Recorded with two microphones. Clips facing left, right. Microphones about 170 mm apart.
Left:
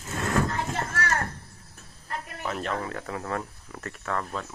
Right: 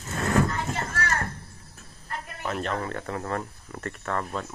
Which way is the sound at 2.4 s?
Centre (ahead or behind).